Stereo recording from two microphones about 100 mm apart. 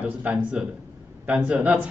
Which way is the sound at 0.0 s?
15° right (ahead or behind).